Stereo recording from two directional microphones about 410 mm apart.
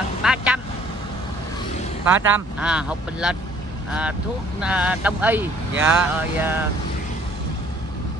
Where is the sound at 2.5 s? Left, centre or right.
Centre.